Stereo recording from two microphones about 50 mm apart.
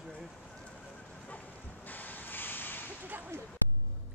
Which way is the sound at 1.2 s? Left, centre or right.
Left.